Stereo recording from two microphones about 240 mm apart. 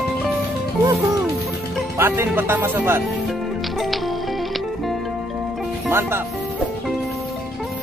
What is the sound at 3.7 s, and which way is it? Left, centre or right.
Music, centre.